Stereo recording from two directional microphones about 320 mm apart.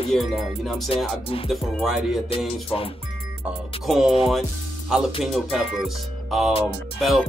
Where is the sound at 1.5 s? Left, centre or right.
Centre.